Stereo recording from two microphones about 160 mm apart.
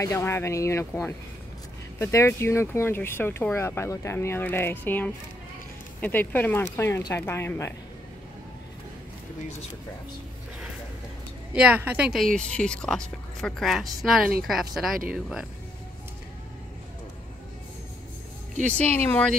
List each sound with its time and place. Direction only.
0.0 s speech: 15° left (ahead or behind)
11.5 s a woman's voice: 10° right (ahead or behind)
12.4 s a woman's voice: 5° left (ahead or behind)
18.7 s speech: 10° left (ahead or behind)